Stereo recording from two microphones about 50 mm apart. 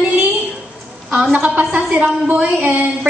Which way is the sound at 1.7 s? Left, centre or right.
Right.